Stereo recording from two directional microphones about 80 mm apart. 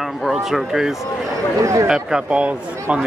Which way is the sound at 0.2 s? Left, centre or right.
Centre.